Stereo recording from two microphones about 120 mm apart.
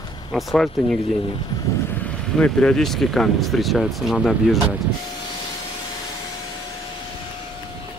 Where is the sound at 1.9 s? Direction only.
10° left (ahead or behind).